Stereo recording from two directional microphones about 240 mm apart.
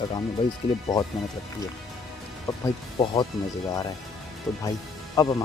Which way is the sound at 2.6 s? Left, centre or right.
Centre.